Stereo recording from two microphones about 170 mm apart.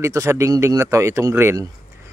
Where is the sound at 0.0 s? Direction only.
20° right (ahead or behind).